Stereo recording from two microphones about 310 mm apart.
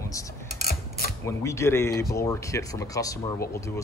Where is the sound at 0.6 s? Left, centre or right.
Left.